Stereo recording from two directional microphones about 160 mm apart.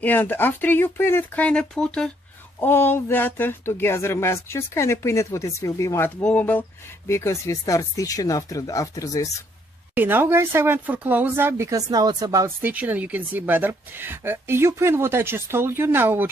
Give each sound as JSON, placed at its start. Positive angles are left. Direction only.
{"t": 0.0, "sound": "speech", "side_deg": 10}
{"t": 9.9, "sound": "speech", "side_deg": -10}
{"t": 12.6, "sound": "speech", "side_deg": -10}